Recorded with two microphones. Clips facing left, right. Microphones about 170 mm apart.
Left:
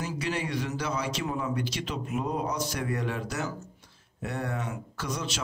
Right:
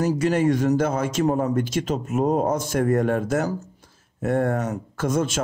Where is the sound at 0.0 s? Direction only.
45° right (ahead or behind).